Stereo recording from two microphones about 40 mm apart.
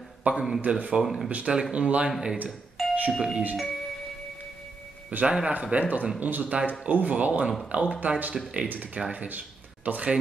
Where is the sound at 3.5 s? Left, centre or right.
Centre.